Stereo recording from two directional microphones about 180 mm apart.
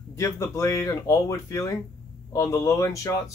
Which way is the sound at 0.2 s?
15° left (ahead or behind).